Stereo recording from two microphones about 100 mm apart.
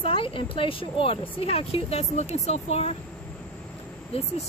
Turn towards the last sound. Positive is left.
turn(degrees=90)